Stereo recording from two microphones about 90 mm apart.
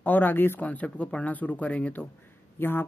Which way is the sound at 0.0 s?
20° left (ahead or behind).